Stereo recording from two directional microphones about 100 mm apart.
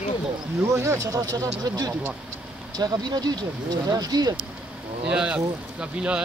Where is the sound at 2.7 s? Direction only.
45° right (ahead or behind).